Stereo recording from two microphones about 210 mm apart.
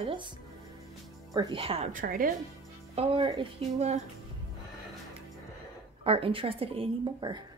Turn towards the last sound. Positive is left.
turn(degrees=-20)  # may be behind; listen again after turning